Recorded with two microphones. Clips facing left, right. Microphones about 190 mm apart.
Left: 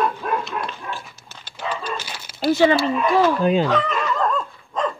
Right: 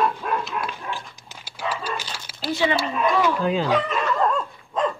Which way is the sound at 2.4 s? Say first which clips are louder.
Left 7 dB; 45° left (ahead or behind).